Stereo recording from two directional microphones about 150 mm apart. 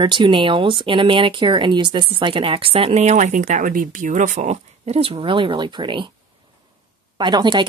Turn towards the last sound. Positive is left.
turn(degrees=-30)  # may be behind; listen again after turning